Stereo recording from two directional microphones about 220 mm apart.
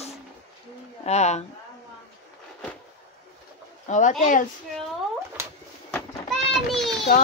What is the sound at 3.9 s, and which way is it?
Speech, 35° left (ahead or behind).